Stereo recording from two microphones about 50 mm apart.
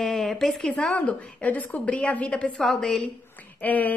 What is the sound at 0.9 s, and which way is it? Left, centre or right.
A woman's voice, left.